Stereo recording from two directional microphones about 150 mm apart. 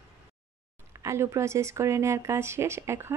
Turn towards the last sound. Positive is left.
turn(degrees=-15)  # may be behind; listen again after turning